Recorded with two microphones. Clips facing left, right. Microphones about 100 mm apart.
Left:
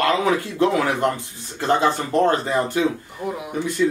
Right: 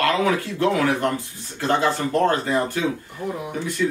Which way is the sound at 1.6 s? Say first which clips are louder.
Left 1 dB; 20° left (ahead or behind).